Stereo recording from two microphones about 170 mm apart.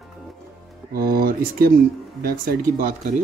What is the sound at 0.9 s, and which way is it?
Speech, 60° right (ahead or behind).